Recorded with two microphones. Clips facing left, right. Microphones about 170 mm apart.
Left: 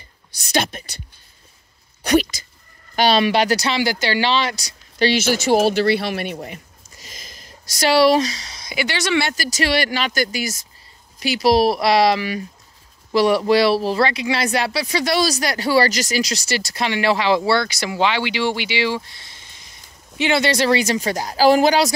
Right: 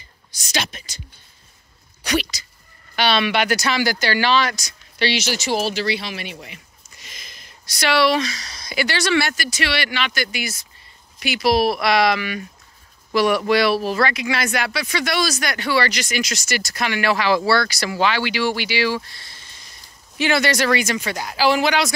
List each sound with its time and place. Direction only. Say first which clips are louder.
0.3 s a woman's voice: left 6 dB; 55° left (ahead or behind)
2.0 s a sound: left 6 dB; 50° left (ahead or behind)
3.0 s speech: left 3 dB; 40° left (ahead or behind)
8.4 s speech: right 1 dB; 20° left (ahead or behind)
9.3 s speech: left 4 dB; 40° left (ahead or behind)